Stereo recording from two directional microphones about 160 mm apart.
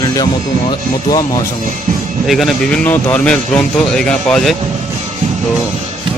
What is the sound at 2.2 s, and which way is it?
Speech, centre (ahead or behind).